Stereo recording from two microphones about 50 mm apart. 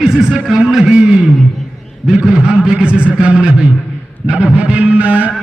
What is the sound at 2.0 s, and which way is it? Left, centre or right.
A man's voice, centre.